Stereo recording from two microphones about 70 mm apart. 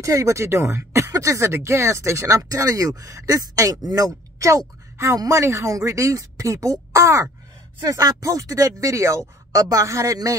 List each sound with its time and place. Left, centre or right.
0.0 s speech: right
3.7 s speech: right
4.4 s a woman's voice: right
7.8 s speech: right
8.3 s speech: right
9.5 s speech: right